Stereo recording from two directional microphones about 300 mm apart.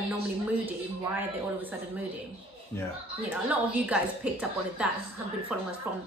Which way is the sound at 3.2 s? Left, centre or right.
Centre.